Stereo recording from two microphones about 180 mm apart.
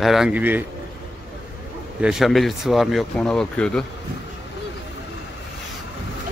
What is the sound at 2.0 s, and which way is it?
Speech, centre (ahead or behind).